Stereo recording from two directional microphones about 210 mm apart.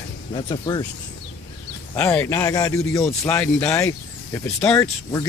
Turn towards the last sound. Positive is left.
turn(degrees=10)  # may be behind; listen again after turning